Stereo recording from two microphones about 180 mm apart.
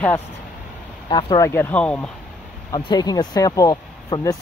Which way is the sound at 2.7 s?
20° left (ahead or behind).